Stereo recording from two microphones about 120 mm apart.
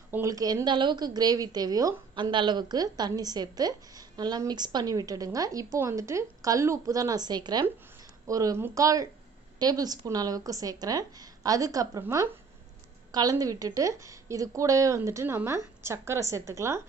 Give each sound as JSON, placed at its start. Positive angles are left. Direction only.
{"t": 0.1, "sound": "a woman's voice", "side_deg": -25}